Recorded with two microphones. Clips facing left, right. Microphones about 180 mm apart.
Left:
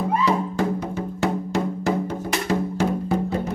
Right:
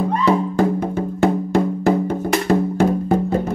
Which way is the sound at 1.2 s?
55° right (ahead or behind).